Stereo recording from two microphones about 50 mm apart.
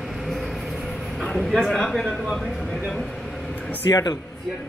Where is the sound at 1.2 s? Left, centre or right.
Centre.